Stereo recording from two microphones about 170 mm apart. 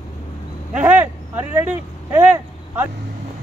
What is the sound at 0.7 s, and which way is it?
Vehicle, 10° right (ahead or behind).